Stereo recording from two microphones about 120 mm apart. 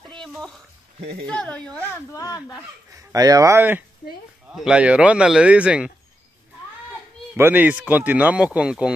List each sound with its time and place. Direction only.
0.2 s a sound: 5° left (ahead or behind)
1.2 s speech: 10° left (ahead or behind)
1.9 s speech: 30° left (ahead or behind)
2.9 s speech: 30° right (ahead or behind)
4.6 s speech: 10° right (ahead or behind)
7.3 s speech: 15° right (ahead or behind)